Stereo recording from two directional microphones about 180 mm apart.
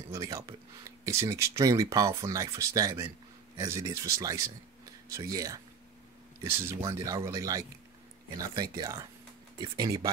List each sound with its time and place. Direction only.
0.1 s speech: 15° right (ahead or behind)
8.7 s speech: 20° right (ahead or behind)